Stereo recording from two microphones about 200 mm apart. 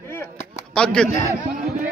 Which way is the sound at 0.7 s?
5° left (ahead or behind).